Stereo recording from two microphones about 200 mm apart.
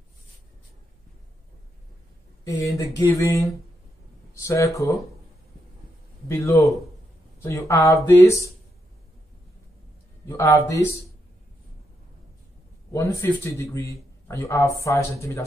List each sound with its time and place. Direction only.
2.4 s speech: 15° left (ahead or behind)
6.2 s speech: 15° left (ahead or behind)
10.2 s speech: 15° left (ahead or behind)
12.9 s speech: 15° left (ahead or behind)